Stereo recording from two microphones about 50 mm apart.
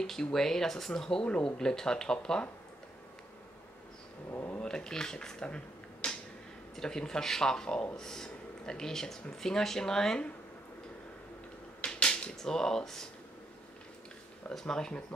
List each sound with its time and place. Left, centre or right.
0.0 s speech: centre
4.3 s speech: left
4.6 s speech: centre
11.8 s speech: left
14.5 s speech: centre